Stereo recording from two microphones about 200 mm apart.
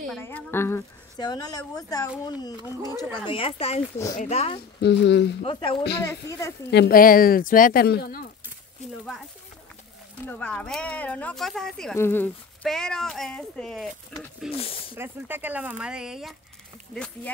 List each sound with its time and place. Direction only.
0.2 s a woman's voice: 10° left (ahead or behind); by 4.6 s 35° left (ahead or behind)
4.8 s speech: 60° left (ahead or behind)
5.4 s a woman's voice: 25° left (ahead or behind)
6.7 s speech: 50° left (ahead or behind)
10.2 s speech: 5° left (ahead or behind)
14.5 s speech: 30° left (ahead or behind)
15.0 s speech: 10° right (ahead or behind); by 17.3 s 5° left (ahead or behind)